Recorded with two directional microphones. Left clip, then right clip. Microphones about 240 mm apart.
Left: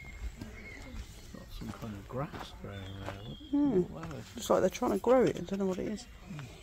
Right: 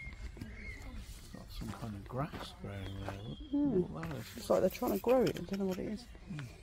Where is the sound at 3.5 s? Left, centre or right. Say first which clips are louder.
Left 4 dB; centre.